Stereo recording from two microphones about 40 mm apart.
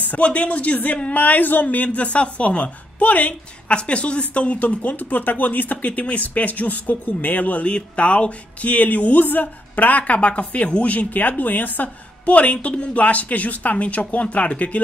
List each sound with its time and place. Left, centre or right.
0.0 s speech: left